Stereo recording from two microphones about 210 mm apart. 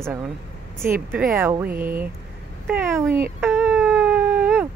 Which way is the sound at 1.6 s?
40° right (ahead or behind).